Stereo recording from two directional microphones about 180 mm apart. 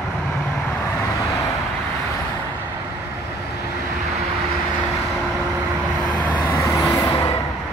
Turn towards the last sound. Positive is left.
turn(degrees=15)  # may be behind; listen again after turning